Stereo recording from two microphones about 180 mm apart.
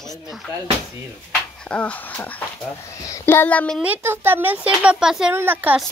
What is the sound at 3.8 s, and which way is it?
Speech, 10° right (ahead or behind).